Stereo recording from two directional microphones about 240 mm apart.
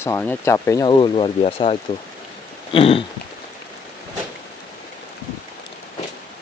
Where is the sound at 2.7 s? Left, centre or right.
Left.